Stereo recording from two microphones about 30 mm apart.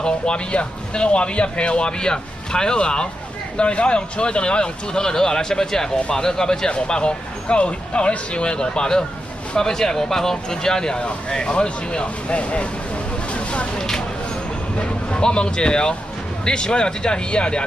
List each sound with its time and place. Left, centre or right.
0.0 s speech: left
6.7 s speech: left
13.3 s vehicle: left
13.7 s speech: centre
14.8 s speech: left